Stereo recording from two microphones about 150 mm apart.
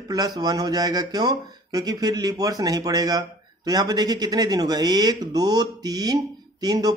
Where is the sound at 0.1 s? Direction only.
25° right (ahead or behind).